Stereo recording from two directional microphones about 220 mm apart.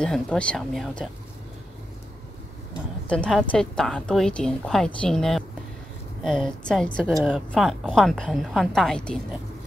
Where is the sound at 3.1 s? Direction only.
5° left (ahead or behind).